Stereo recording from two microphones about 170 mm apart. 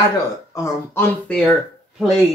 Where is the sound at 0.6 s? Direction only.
15° left (ahead or behind).